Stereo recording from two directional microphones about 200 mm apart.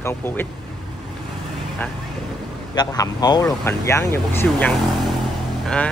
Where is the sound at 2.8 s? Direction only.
20° left (ahead or behind).